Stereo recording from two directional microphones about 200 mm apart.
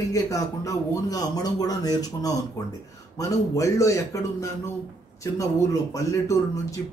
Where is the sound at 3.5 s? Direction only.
15° left (ahead or behind).